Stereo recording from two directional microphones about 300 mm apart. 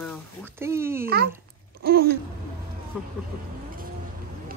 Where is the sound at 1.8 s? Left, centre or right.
Right.